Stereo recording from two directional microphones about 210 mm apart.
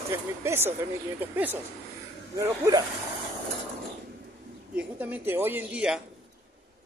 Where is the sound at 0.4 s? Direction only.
10° right (ahead or behind).